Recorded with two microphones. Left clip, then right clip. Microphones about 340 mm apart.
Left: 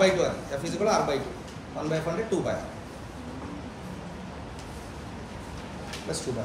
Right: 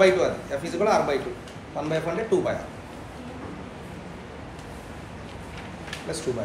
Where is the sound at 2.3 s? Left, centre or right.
Right.